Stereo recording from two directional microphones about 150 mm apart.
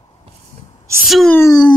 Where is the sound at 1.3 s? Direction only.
25° left (ahead or behind).